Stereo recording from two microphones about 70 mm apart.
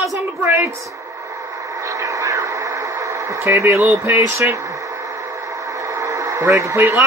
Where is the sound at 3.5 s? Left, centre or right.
Right.